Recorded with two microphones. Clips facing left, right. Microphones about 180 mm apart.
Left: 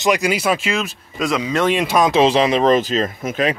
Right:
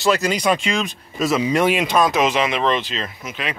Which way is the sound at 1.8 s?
10° left (ahead or behind).